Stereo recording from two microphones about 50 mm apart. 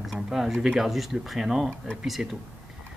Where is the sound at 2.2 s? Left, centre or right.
Centre.